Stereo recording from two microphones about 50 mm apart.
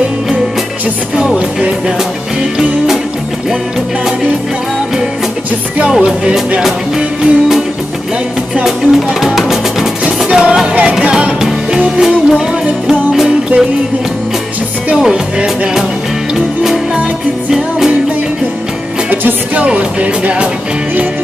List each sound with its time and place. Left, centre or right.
1.1 s music: centre
5.9 s music: centre
8.6 s music: centre
10.0 s music: right
10.7 s music: right
12.0 s music: centre
15.0 s music: centre
19.0 s music: right